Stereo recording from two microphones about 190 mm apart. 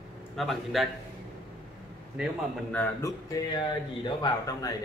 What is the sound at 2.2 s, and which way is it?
Speech, 5° right (ahead or behind).